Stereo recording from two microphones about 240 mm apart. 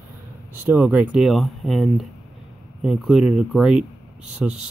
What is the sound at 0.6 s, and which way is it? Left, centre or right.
Speech, centre.